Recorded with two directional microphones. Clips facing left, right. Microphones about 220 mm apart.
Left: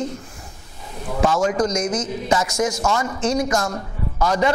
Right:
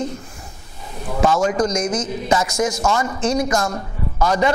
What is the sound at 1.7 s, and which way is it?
Speech, 55° right (ahead or behind).